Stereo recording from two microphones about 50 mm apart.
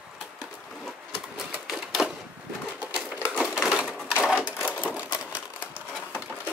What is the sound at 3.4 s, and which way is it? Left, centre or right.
Crushing, centre.